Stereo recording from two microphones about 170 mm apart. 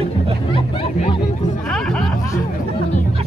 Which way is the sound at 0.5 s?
35° left (ahead or behind).